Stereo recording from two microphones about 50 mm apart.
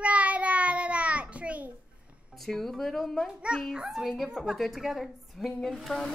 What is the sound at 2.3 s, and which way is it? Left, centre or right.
Speech, centre.